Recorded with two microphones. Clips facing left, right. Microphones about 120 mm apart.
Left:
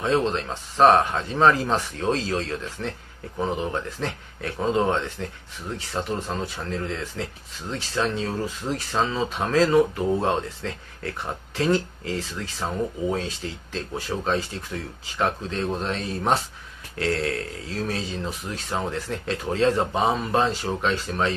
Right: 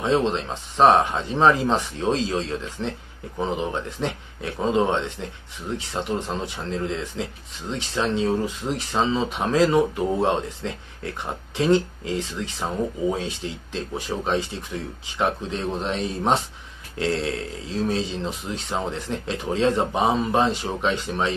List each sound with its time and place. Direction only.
0.0 s speech: 20° right (ahead or behind)